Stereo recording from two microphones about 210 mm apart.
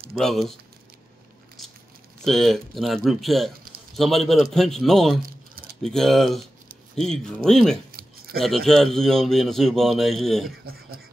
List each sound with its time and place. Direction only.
0.2 s a man's voice: centre (ahead or behind)
2.2 s a man's voice: centre (ahead or behind)
10.6 s speech: 45° right (ahead or behind)